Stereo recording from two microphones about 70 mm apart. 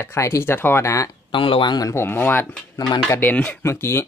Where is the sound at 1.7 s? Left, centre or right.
Left.